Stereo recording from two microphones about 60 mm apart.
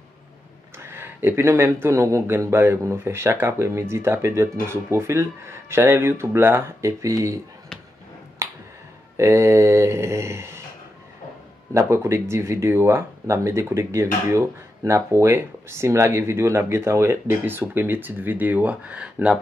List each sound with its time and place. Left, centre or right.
0.8 s speech: right
8.4 s finger snapping: right
9.1 s speech: right
11.9 s speech: right; by 19.3 s centre